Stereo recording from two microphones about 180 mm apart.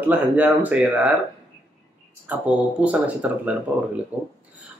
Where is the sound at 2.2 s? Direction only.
5° right (ahead or behind).